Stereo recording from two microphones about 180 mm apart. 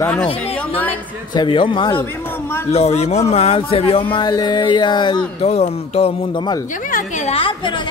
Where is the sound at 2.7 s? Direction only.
35° left (ahead or behind).